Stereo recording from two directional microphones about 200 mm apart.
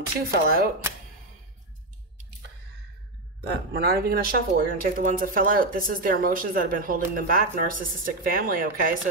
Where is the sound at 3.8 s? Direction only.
50° right (ahead or behind).